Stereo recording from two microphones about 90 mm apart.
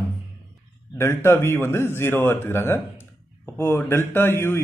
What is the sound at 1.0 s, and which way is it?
Speech, 30° left (ahead or behind).